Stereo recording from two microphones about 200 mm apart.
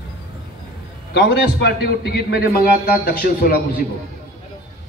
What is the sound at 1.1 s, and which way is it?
A man's voice, 60° left (ahead or behind).